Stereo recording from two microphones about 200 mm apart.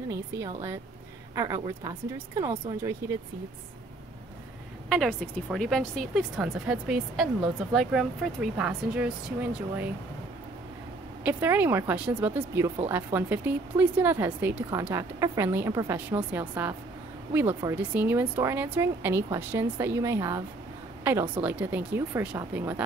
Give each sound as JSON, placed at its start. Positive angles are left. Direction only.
{"t": 0.1, "sound": "speech", "side_deg": -15}
{"t": 4.8, "sound": "speech", "side_deg": 0}
{"t": 11.2, "sound": "speech", "side_deg": -10}